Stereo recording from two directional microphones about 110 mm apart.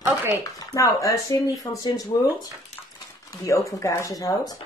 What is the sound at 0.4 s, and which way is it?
Speech, 30° left (ahead or behind).